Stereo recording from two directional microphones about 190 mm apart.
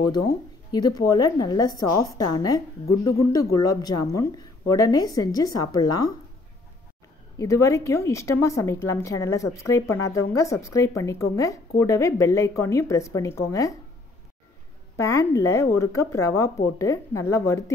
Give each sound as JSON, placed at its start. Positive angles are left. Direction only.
{"t": 0.7, "sound": "a woman's voice", "side_deg": 20}
{"t": 7.3, "sound": "a woman's voice", "side_deg": 15}
{"t": 15.0, "sound": "a woman's voice", "side_deg": 15}